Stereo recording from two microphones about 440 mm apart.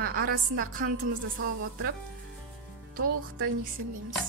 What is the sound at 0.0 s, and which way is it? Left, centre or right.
A woman's voice, centre.